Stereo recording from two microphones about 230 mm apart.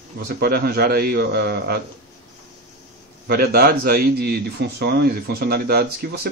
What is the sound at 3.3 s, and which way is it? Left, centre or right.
A man's voice, right.